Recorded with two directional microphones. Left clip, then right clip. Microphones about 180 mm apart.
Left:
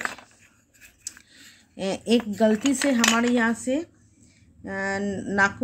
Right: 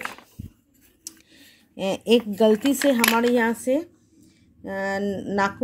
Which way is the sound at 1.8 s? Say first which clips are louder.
Right 4 dB; 20° right (ahead or behind).